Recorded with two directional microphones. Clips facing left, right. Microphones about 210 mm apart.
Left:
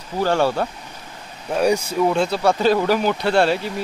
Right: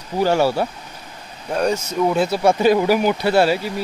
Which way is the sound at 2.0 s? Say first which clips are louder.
Right 1 dB; 5° right (ahead or behind).